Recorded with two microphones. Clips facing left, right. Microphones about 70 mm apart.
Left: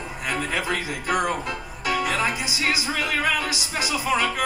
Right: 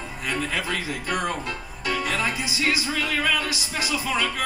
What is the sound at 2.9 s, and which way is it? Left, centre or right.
Music, left.